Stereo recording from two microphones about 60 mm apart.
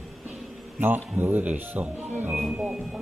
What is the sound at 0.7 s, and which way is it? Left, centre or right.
Speech, right.